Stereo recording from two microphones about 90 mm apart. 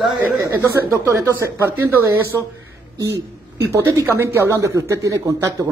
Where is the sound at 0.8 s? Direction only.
35° right (ahead or behind).